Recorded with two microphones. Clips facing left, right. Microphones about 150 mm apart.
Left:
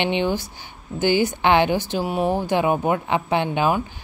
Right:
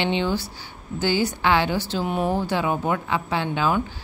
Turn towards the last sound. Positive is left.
turn(degrees=15)  # may be behind; listen again after turning